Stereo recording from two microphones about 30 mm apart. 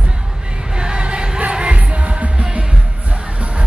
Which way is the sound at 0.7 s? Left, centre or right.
Right.